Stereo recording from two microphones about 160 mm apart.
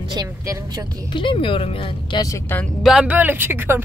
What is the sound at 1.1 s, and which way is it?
Speech, 30° left (ahead or behind).